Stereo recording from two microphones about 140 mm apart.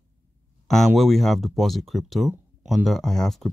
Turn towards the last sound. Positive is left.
turn(degrees=0)  # may be behind; listen again after turning